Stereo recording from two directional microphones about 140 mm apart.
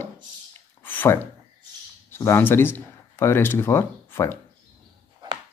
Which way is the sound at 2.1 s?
15° left (ahead or behind).